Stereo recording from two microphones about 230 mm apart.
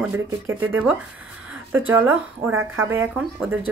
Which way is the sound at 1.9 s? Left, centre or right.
Centre.